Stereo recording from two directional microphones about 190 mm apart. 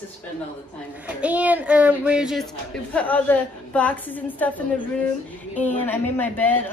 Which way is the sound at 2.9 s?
10° left (ahead or behind).